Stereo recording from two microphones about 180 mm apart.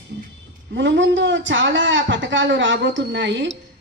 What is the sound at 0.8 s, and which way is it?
A man's voice, 90° right.